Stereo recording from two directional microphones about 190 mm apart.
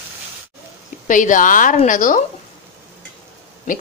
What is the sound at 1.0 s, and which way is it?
A woman's voice, 40° left (ahead or behind).